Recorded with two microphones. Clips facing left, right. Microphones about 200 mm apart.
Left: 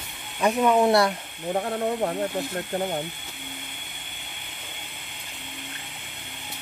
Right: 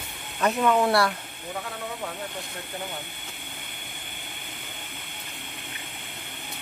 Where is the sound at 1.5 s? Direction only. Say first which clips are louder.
Left 10 dB; 45° left (ahead or behind).